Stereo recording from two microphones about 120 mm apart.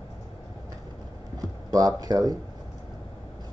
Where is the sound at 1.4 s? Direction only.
30° right (ahead or behind).